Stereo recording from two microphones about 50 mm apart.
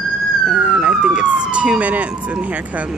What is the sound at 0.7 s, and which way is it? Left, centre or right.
Speech, right.